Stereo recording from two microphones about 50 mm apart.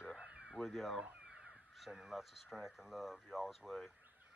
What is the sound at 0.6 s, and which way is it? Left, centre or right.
Speech, centre.